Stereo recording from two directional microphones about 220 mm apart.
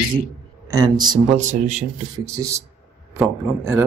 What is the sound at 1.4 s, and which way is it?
Speech, 35° right (ahead or behind).